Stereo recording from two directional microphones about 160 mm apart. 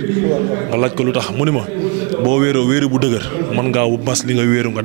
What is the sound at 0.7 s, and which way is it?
A man's voice, 20° right (ahead or behind).